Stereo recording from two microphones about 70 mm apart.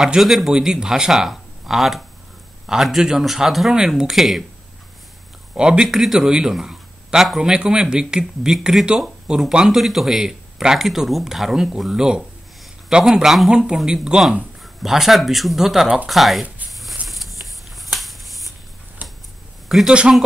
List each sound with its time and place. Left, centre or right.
0.0 s speech: centre
5.5 s a man's voice: centre
17.1 s a sound: centre
17.9 s shuffling cards: centre
19.0 s tick-tock: right
19.9 s a man's voice: centre